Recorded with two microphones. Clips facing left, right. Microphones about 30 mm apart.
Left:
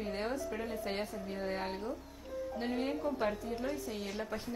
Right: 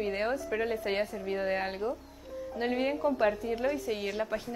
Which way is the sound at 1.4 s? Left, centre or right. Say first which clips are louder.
Right 5 dB; right.